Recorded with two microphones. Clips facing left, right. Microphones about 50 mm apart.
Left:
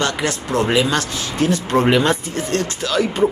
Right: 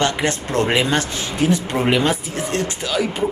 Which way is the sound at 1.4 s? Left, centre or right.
Centre.